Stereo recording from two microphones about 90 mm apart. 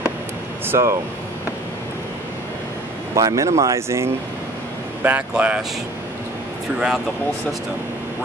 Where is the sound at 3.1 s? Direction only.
40° right (ahead or behind).